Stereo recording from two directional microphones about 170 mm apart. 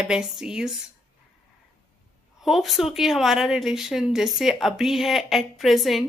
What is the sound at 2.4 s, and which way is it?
A woman's voice, centre (ahead or behind).